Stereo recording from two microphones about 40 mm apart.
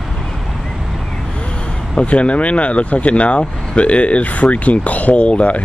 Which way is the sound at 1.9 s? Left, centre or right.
Left.